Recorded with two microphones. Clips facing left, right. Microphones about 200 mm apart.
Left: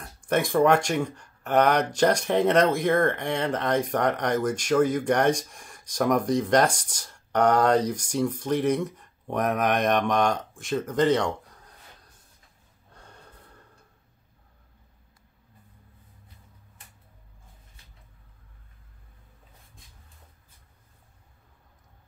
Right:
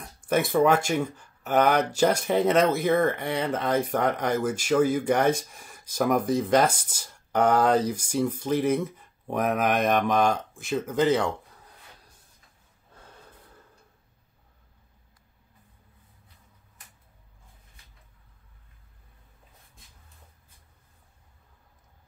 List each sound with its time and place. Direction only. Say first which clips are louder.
0.2 s speech: even; 5° right (ahead or behind)
12.9 s snort: even; 5° right (ahead or behind)